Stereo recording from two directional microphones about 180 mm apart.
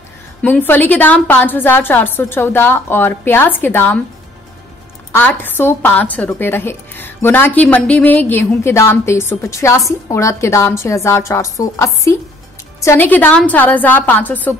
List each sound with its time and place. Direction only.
0.4 s a woman's voice: 10° left (ahead or behind)
5.1 s a woman's voice: 10° left (ahead or behind)